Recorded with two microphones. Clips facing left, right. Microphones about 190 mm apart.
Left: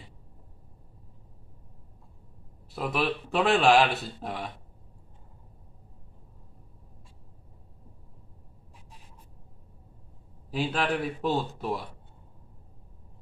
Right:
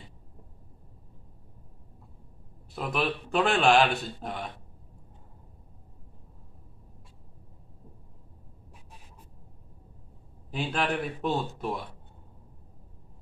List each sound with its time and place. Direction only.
2.7 s speech: centre (ahead or behind)
10.5 s speech: centre (ahead or behind)